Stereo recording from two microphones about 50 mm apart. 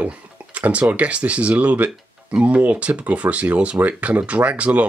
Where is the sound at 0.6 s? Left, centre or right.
Right.